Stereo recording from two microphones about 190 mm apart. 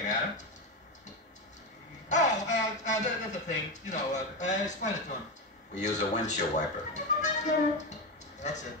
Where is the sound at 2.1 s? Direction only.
40° left (ahead or behind).